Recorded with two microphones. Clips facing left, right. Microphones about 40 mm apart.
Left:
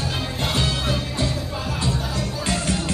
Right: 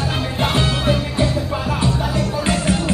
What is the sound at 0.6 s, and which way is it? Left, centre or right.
Music, centre.